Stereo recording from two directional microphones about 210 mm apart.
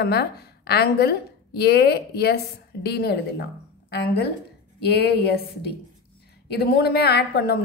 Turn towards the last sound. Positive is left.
turn(degrees=50)  # may be behind; listen again after turning